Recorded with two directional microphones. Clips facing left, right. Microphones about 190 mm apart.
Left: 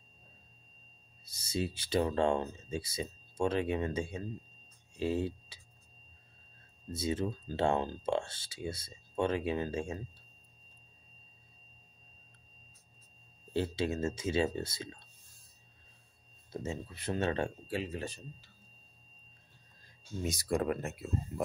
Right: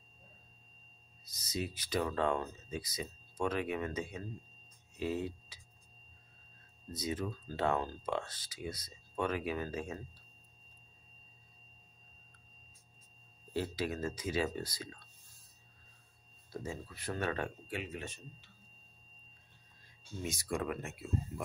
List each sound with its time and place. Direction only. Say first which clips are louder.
1.2 s speech: left 4 dB; 30° left (ahead or behind)
6.9 s speech: left 4 dB; 25° left (ahead or behind)
13.5 s speech: left 3 dB; 25° left (ahead or behind)
16.5 s speech: left 3 dB; 25° left (ahead or behind)
20.2 s speech: left 5 dB; 35° left (ahead or behind)